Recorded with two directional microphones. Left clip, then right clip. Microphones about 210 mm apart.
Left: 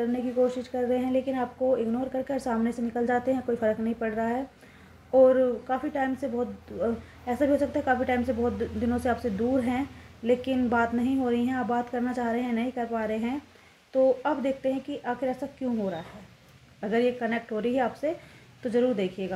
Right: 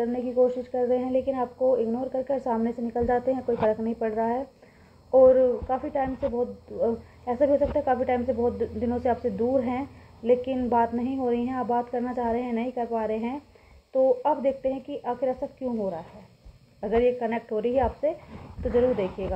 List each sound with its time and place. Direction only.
0.0 s a woman's voice: 25° left (ahead or behind)